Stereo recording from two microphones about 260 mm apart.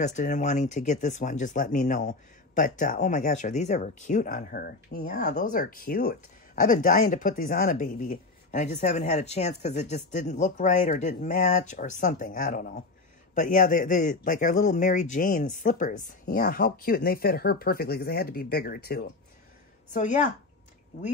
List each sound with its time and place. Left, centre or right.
0.0 s speech: left
19.9 s speech: left